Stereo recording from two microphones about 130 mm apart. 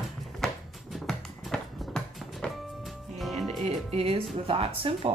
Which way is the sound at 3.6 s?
50° right (ahead or behind).